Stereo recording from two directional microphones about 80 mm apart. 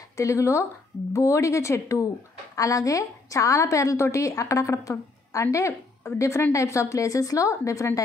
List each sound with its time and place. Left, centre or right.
0.2 s a woman's voice: left